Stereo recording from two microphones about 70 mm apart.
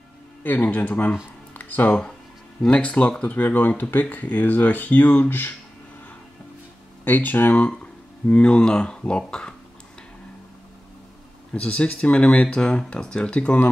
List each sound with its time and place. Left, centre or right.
0.4 s speech: left
7.1 s speech: left
11.5 s speech: centre